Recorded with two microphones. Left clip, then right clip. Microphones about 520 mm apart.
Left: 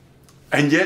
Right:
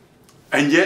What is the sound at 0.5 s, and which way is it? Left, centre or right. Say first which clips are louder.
Speech: even; left.